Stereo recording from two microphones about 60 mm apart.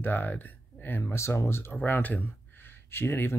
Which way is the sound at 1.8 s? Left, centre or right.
Left.